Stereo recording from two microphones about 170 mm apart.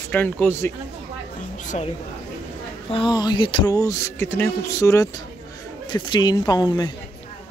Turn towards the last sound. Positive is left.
turn(degrees=25)  # may be behind; listen again after turning